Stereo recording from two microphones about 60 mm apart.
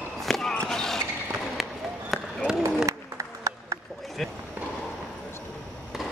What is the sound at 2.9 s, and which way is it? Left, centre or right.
Applause, right.